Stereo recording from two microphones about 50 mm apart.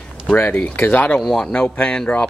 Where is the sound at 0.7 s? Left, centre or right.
Left.